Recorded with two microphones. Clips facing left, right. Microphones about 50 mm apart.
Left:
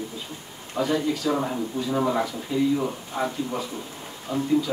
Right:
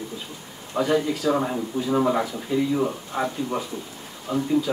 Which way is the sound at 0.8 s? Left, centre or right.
Centre.